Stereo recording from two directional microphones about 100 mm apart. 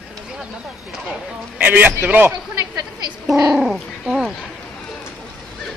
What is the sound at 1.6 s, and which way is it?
Speech, 15° right (ahead or behind).